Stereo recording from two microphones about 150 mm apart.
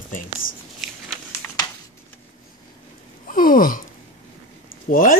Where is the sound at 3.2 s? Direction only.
65° left (ahead or behind).